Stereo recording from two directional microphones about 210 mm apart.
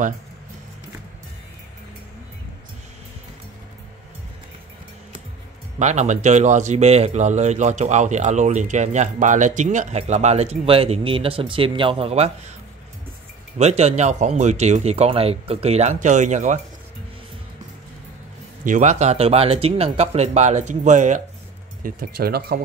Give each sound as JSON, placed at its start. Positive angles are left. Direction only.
{"t": 5.8, "sound": "a man's voice", "side_deg": -35}
{"t": 13.6, "sound": "a man's voice", "side_deg": -30}
{"t": 18.6, "sound": "a man's voice", "side_deg": -35}